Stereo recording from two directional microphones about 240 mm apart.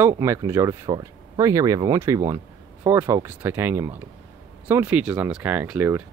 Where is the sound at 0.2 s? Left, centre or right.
Centre.